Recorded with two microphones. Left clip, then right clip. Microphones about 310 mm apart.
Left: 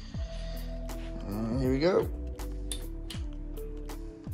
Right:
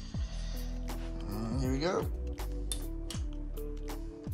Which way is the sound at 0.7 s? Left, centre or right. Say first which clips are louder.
Left 1 dB; centre.